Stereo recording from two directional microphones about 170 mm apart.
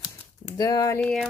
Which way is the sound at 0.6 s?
20° left (ahead or behind).